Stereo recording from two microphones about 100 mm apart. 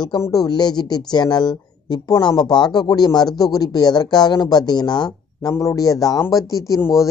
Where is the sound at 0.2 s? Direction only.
40° left (ahead or behind).